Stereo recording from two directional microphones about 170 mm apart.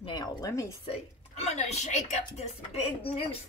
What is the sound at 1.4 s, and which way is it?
A woman's voice, 40° left (ahead or behind).